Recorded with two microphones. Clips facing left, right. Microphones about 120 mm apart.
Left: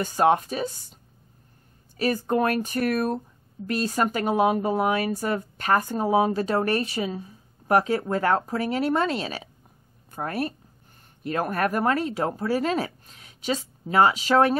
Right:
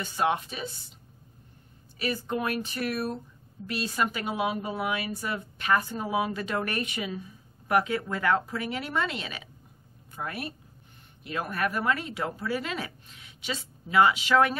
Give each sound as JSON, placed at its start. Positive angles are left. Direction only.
{"t": 0.0, "sound": "speech", "side_deg": 40}
{"t": 2.0, "sound": "speech", "side_deg": 45}